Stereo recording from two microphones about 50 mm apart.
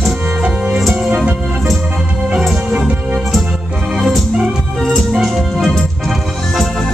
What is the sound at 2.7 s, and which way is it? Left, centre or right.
Music, right.